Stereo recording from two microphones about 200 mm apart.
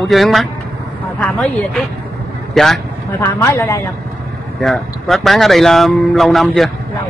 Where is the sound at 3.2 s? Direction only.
15° left (ahead or behind).